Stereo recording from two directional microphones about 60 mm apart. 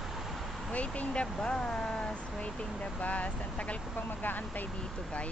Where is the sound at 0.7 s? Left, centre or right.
Left.